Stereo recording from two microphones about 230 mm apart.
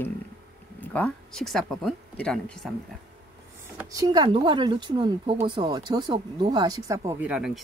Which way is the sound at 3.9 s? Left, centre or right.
Centre.